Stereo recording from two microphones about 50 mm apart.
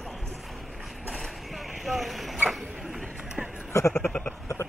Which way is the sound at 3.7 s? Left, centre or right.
Left.